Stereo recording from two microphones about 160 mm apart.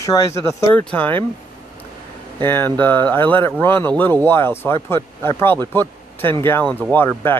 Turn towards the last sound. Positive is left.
turn(degrees=15)  # may be behind; listen again after turning